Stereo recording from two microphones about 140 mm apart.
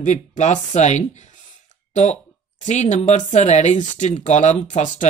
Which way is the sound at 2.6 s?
55° left (ahead or behind).